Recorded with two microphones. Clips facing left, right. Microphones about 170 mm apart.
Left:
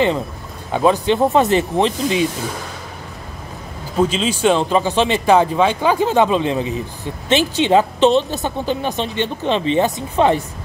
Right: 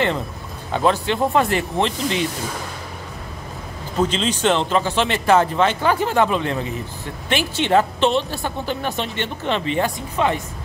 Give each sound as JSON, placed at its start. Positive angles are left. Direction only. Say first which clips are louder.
{"t": 0.7, "sound": "speech", "louder": "left 4 dB", "side_deg": 15}
{"t": 4.0, "sound": "speech", "louder": "left 3 dB", "side_deg": 10}